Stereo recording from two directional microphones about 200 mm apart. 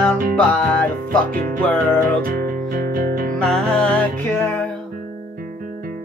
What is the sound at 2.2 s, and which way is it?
Music, 45° right (ahead or behind).